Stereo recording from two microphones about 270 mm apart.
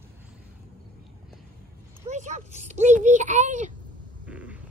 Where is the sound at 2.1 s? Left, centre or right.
Right.